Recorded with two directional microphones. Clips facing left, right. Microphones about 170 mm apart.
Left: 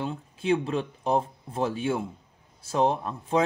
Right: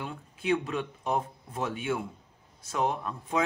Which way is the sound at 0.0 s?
30° left (ahead or behind).